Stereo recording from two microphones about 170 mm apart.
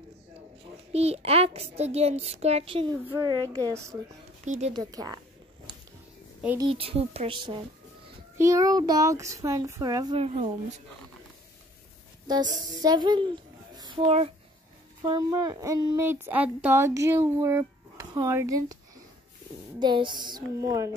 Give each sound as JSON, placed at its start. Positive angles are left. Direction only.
{"t": 0.9, "sound": "a child's voice", "side_deg": -35}
{"t": 3.1, "sound": "speech", "side_deg": -20}
{"t": 4.5, "sound": "a child's voice", "side_deg": -40}
{"t": 4.7, "sound": "speech", "side_deg": -20}
{"t": 6.6, "sound": "a child's voice", "side_deg": -35}
{"t": 10.1, "sound": "a child's voice", "side_deg": -35}
{"t": 12.3, "sound": "a child's voice", "side_deg": -25}
{"t": 16.0, "sound": "speech", "side_deg": -10}
{"t": 19.8, "sound": "speech", "side_deg": -25}